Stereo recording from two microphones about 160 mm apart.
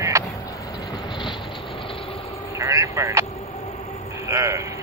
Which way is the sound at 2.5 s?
20° right (ahead or behind).